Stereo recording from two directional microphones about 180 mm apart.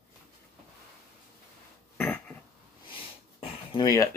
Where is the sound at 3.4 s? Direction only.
25° left (ahead or behind).